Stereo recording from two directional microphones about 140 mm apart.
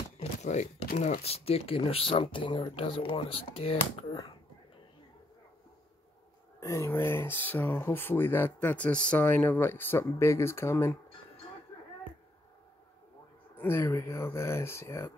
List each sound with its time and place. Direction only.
0.2 s a sound: 55° left (ahead or behind)
1.2 s speech: 45° left (ahead or behind)
6.6 s speech: 20° left (ahead or behind)
13.6 s speech: 15° left (ahead or behind)